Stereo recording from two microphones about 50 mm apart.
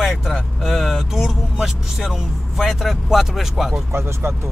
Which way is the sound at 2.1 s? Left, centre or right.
Centre.